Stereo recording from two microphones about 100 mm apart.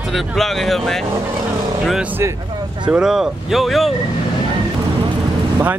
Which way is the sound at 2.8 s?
5° right (ahead or behind).